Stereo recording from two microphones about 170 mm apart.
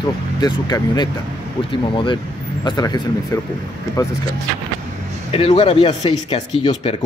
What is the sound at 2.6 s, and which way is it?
Speech, 25° left (ahead or behind).